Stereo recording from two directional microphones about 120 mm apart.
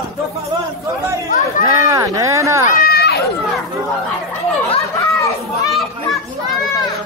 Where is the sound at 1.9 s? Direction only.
25° right (ahead or behind).